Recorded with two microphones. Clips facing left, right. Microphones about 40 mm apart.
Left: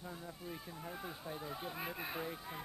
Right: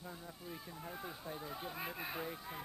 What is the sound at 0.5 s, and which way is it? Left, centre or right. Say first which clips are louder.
Speech: even; centre.